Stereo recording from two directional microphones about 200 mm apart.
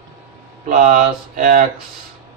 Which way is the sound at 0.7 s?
40° right (ahead or behind).